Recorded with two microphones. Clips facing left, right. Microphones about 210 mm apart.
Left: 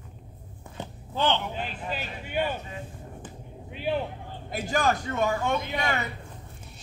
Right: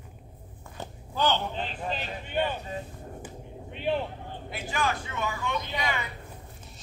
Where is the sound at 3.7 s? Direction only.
5° left (ahead or behind).